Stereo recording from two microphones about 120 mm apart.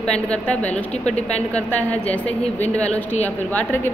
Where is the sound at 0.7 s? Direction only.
70° left (ahead or behind).